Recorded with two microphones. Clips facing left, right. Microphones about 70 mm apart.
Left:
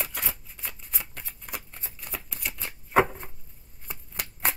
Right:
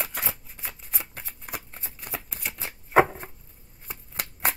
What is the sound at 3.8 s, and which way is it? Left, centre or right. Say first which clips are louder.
Shuffling cards: right 1 dB; centre.